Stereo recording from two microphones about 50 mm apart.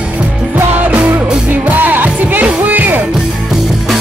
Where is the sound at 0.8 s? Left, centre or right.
Right.